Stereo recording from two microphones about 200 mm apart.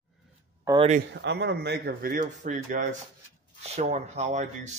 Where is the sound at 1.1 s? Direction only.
60° right (ahead or behind).